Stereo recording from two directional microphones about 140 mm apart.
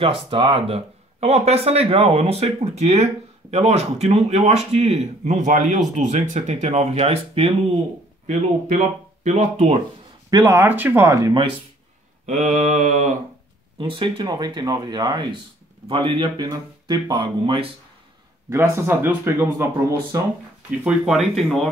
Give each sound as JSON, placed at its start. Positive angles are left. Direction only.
{"t": 0.0, "sound": "speech", "side_deg": -40}
{"t": 9.2, "sound": "speech", "side_deg": -55}
{"t": 10.3, "sound": "speech", "side_deg": -20}
{"t": 12.3, "sound": "mantra", "side_deg": -60}
{"t": 13.7, "sound": "speech", "side_deg": -35}
{"t": 18.5, "sound": "speech", "side_deg": -20}
{"t": 20.8, "sound": "speech", "side_deg": -5}